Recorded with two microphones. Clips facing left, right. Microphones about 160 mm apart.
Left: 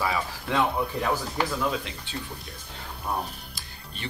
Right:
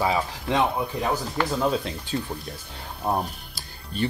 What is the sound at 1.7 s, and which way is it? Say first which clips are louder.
Speech: right 6 dB; 40° right (ahead or behind).